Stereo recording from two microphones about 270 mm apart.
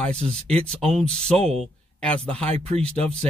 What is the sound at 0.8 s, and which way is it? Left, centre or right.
Speech, right.